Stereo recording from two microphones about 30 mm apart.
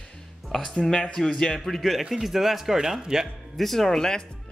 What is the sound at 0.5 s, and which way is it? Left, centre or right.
Speech, centre.